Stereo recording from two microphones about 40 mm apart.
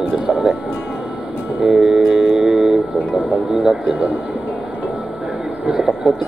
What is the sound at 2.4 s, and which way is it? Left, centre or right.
Music, centre.